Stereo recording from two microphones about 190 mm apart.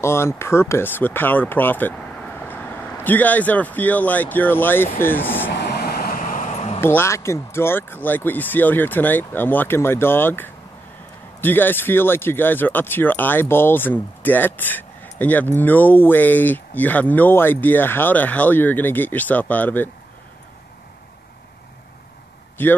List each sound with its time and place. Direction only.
0.0 s speech: 15° left (ahead or behind)
5.5 s vehicle: 60° left (ahead or behind); by 6.8 s 35° left (ahead or behind)
6.8 s speech: 10° left (ahead or behind)
22.6 s speech: 10° left (ahead or behind)